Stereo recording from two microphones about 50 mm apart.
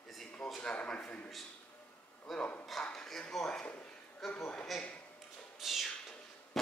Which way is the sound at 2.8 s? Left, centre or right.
Centre.